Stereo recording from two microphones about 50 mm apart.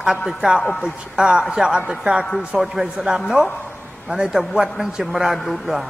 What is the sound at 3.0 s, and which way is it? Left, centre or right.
Speech, centre.